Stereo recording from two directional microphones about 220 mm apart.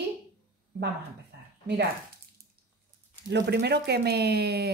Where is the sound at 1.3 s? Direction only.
50° right (ahead or behind).